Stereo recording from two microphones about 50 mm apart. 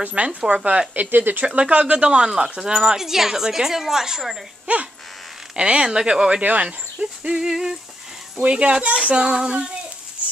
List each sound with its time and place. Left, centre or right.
0.0 s speech: right
0.4 s speech: centre
0.7 s speech: right
1.1 s speech: right
1.4 s speech: right; by 4.4 s centre
4.7 s speech: right; by 7.7 s centre
8.4 s speech: right